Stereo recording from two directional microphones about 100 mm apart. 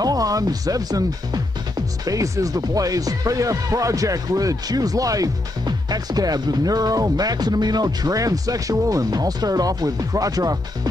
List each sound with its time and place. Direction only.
0.0 s speech: 40° right (ahead or behind)